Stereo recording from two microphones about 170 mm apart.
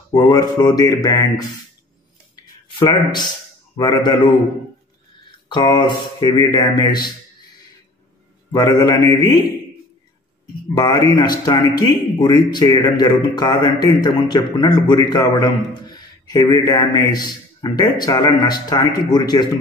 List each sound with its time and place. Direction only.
0.3 s a man's voice: 25° left (ahead or behind)
2.8 s a man's voice: 25° left (ahead or behind)
5.5 s a man's voice: 25° left (ahead or behind)
8.5 s a man's voice: 20° left (ahead or behind)
10.7 s a man's voice: 25° left (ahead or behind)